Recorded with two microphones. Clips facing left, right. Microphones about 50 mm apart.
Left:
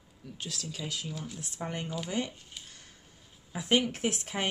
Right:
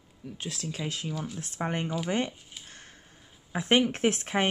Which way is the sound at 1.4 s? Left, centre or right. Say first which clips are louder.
Right 6 dB; right.